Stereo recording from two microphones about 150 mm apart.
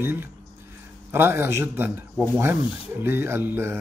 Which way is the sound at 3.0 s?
15° right (ahead or behind).